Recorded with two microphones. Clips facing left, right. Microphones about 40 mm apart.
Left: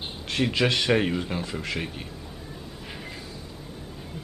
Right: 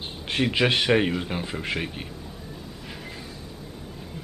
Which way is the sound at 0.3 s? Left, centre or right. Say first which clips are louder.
Right 2 dB; right.